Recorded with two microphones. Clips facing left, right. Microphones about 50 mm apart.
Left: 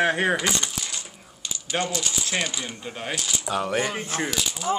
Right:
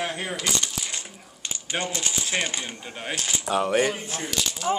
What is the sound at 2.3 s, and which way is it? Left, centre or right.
Speech, centre.